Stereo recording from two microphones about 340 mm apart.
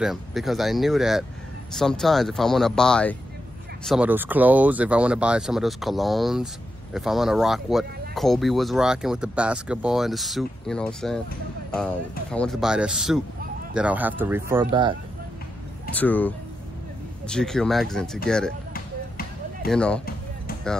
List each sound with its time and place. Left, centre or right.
0.0 s speech: centre
15.9 s speech: centre
18.7 s basketball bounce: left
19.7 s speech: centre